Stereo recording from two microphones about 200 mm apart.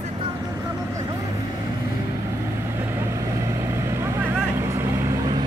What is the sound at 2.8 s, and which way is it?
Vehicle, 10° right (ahead or behind).